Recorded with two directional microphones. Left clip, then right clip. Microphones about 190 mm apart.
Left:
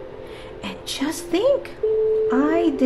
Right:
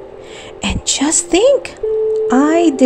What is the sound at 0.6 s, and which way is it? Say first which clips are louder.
A woman's voice: right 11 dB; 35° right (ahead or behind).